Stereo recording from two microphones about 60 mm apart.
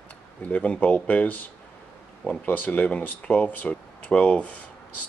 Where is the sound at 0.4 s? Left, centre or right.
Left.